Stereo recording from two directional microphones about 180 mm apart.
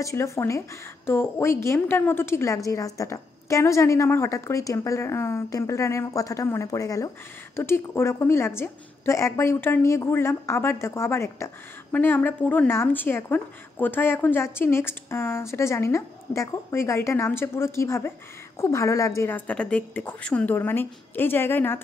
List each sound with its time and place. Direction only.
0.0 s a woman's voice: 15° left (ahead or behind)